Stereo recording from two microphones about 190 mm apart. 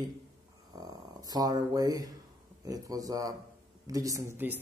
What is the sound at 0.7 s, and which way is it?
A man's voice, 20° right (ahead or behind).